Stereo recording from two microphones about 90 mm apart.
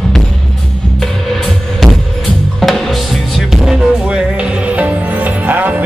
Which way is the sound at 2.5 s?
Centre (ahead or behind).